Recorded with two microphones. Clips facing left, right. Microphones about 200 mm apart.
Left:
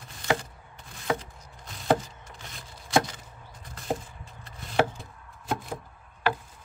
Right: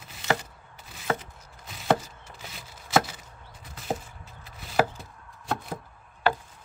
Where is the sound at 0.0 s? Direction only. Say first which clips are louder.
Even; 5° right (ahead or behind).